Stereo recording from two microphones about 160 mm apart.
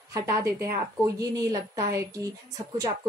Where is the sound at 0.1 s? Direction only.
20° right (ahead or behind).